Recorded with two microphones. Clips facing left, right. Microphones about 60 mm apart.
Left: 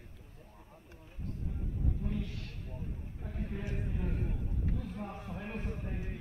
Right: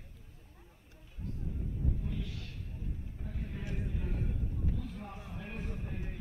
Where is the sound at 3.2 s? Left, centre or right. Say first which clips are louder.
Left 3 dB; left.